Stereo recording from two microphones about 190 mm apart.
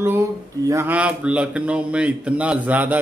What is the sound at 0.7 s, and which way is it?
Speech, 10° right (ahead or behind).